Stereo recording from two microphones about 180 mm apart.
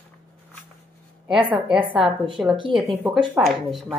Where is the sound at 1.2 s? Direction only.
5° right (ahead or behind).